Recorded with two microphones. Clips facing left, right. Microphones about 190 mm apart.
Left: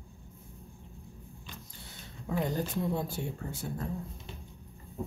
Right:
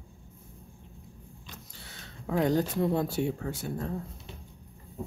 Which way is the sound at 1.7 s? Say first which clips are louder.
Even; 80° right.